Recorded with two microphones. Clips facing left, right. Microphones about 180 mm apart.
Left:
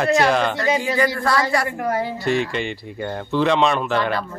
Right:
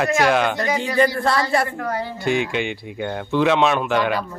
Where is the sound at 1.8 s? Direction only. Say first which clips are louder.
Left 3 dB; 20° left (ahead or behind).